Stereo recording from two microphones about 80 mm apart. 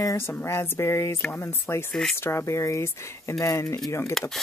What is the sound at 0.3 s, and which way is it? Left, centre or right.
Speech, left.